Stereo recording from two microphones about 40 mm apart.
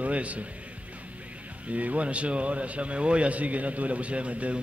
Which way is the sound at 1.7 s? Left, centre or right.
Right.